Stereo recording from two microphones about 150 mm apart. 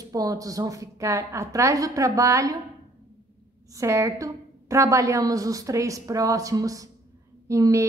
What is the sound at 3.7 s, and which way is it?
A woman's voice, 20° right (ahead or behind).